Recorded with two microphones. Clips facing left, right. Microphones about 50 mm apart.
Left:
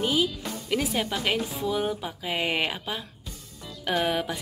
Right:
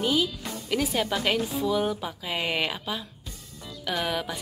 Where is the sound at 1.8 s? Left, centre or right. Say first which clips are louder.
Right 1 dB; centre.